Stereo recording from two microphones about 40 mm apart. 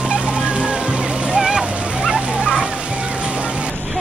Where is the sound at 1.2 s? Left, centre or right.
Centre.